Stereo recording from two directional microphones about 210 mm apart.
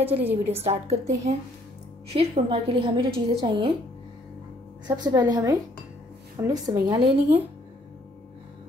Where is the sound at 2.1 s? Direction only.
25° right (ahead or behind).